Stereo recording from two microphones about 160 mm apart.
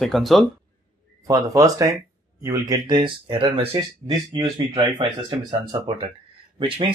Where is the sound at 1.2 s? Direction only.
20° right (ahead or behind).